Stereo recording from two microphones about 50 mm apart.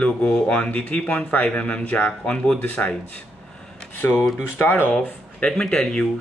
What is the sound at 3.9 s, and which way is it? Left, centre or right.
Speech, left.